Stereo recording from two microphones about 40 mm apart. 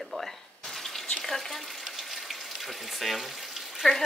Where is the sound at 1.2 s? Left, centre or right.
Centre.